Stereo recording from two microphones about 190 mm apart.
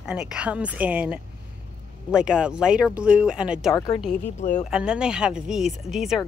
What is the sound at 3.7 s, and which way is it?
Speech, 20° left (ahead or behind).